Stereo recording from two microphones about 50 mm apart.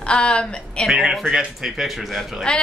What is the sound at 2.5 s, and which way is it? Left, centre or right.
Speech, centre.